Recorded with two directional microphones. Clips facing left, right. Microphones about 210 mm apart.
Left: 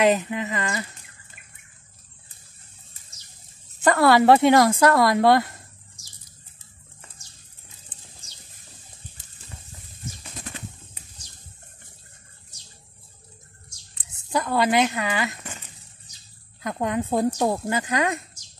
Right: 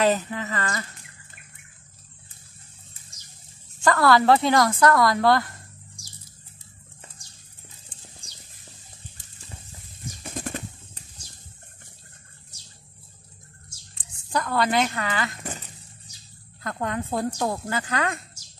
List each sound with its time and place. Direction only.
0.0 s speech: 15° left (ahead or behind)
3.8 s speech: 25° left (ahead or behind)
8.2 s a sound: 15° right (ahead or behind)
10.3 s a sound: 50° right (ahead or behind)
14.3 s speech: 15° left (ahead or behind)
16.6 s speech: 15° left (ahead or behind)